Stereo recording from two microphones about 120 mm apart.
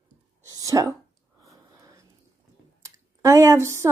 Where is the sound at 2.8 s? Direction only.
25° right (ahead or behind).